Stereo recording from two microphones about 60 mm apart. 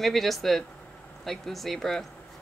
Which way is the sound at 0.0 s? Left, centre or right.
Centre.